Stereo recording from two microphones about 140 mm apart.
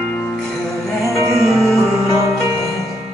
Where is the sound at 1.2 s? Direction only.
20° right (ahead or behind).